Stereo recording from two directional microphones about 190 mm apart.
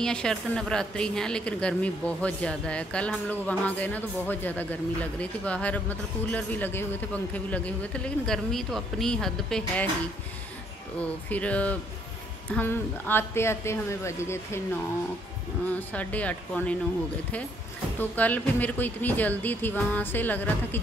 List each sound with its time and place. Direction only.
0.0 s a woman's voice: 5° left (ahead or behind)
11.0 s a man's voice: 5° left (ahead or behind)
15.6 s a man's voice: 10° left (ahead or behind)
17.9 s a man's voice: 10° left (ahead or behind)